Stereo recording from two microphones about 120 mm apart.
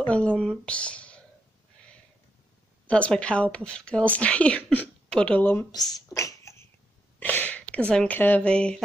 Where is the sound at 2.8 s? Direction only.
10° left (ahead or behind).